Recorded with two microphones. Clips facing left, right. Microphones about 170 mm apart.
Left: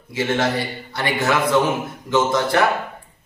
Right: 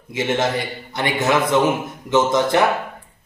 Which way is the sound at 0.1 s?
20° right (ahead or behind).